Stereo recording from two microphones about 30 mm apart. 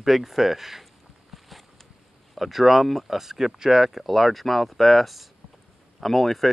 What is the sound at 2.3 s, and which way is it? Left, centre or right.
Speech, centre.